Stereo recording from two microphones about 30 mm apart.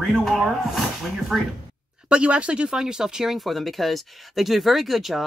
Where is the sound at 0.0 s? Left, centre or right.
Centre.